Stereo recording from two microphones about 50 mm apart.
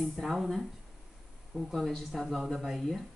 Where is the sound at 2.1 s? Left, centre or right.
Centre.